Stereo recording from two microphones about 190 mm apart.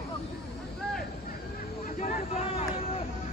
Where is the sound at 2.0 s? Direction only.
40° left (ahead or behind).